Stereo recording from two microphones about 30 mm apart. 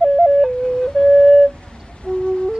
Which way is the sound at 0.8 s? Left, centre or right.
Centre.